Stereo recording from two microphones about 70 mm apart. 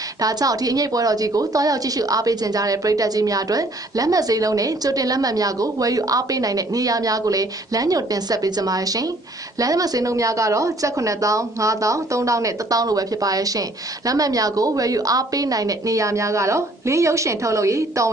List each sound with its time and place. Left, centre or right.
0.2 s a woman's voice: right